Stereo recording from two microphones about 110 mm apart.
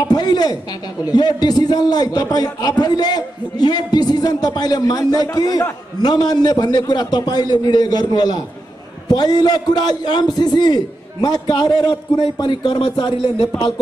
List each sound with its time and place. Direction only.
0.0 s a man's voice: 40° left (ahead or behind)